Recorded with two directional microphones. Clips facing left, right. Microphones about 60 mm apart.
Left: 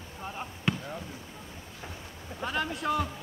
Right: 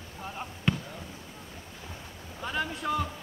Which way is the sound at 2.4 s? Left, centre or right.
Left.